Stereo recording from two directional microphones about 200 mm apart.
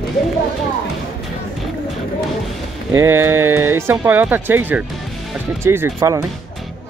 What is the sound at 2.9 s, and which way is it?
Speech, 10° right (ahead or behind).